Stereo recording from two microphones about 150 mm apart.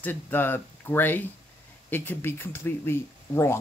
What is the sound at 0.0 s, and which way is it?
Speech, 15° left (ahead or behind).